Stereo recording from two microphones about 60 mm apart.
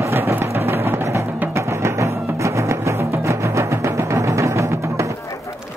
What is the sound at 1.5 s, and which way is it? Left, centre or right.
Music, right.